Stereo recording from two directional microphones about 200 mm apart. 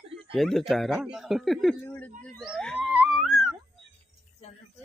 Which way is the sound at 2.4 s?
Centre (ahead or behind).